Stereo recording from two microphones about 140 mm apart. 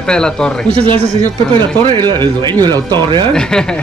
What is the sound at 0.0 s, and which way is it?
Speech, 5° left (ahead or behind).